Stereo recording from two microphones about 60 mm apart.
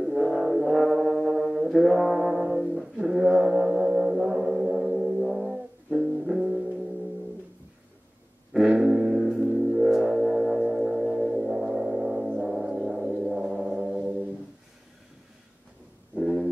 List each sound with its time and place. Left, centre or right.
0.0 s music: centre
8.5 s music: centre
16.2 s a sound: centre